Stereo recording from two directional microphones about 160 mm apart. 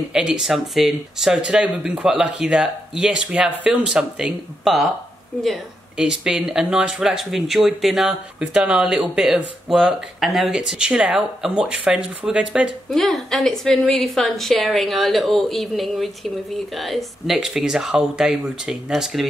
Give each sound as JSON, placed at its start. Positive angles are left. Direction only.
{"t": 0.1, "sound": "speech", "side_deg": -5}